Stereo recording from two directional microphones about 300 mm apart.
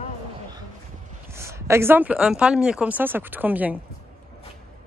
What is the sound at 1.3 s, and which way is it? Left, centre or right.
Speech, centre.